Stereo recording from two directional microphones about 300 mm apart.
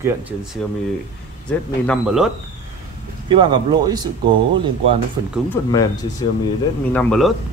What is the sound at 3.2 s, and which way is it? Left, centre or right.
Speech, centre.